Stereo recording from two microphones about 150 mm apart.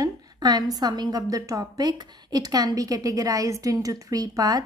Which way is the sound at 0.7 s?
25° right (ahead or behind).